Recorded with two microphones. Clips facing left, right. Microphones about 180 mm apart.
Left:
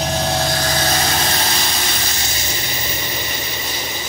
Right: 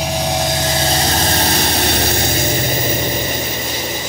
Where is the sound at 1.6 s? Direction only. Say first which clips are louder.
Right 8 dB; 60° right (ahead or behind).